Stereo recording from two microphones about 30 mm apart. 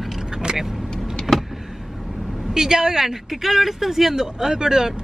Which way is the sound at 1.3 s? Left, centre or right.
Centre.